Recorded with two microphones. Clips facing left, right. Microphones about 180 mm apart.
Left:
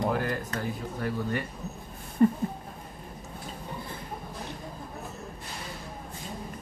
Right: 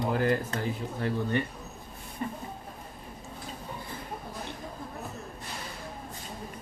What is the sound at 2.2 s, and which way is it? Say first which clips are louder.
Speech: left 13 dB; 45° left (ahead or behind).